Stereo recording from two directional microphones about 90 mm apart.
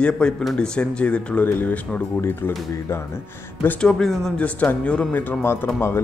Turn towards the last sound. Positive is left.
turn(degrees=30)  # may be behind; listen again after turning